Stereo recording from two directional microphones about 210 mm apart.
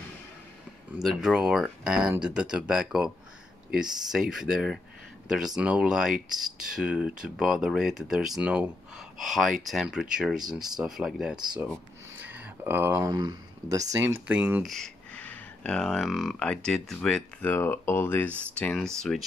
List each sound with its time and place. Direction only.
0.9 s speech: centre (ahead or behind)
11.4 s speech: 20° right (ahead or behind); by 19.2 s centre (ahead or behind)